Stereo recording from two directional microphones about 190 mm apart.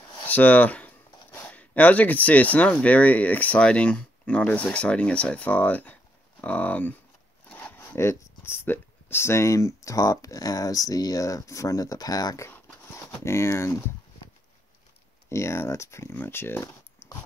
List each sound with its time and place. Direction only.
0.2 s speech: 10° left (ahead or behind)
15.2 s speech: 15° left (ahead or behind)